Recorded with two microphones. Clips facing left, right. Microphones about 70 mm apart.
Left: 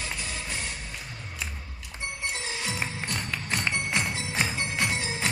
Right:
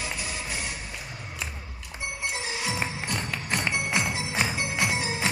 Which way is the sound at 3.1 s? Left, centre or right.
Centre.